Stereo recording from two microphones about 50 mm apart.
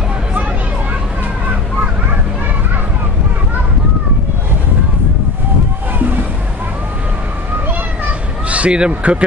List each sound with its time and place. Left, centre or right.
8.5 s speech: right